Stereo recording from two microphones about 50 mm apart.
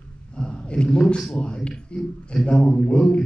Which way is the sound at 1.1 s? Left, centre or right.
Centre.